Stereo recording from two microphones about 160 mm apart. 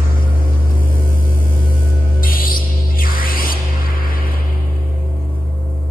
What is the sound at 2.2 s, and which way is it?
Music, 60° left (ahead or behind).